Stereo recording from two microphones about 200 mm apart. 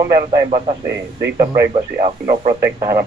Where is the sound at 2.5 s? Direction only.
15° right (ahead or behind).